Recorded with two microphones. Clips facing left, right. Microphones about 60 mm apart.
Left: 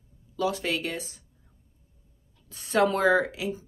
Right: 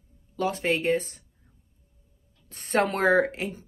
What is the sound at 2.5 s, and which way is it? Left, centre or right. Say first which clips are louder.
Speech: left 1 dB; right.